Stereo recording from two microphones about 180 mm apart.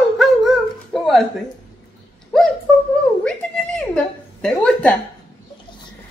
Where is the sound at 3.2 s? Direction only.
5° left (ahead or behind).